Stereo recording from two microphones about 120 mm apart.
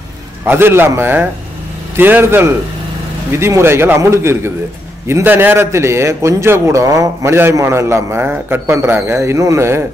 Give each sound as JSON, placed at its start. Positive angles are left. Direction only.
{"t": 0.5, "sound": "a man's voice", "side_deg": -20}